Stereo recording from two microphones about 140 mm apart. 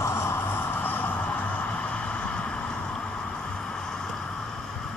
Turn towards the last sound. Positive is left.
turn(degrees=5)  # may be behind; listen again after turning